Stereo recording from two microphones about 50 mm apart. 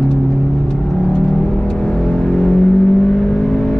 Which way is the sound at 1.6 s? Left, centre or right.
Centre.